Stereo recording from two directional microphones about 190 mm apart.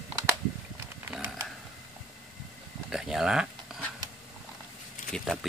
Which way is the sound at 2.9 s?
Centre (ahead or behind).